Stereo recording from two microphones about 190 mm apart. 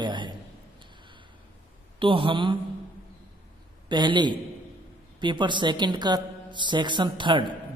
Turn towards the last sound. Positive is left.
turn(degrees=-25)  # may be behind; listen again after turning